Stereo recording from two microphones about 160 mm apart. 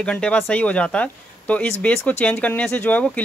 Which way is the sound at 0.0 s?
5° left (ahead or behind).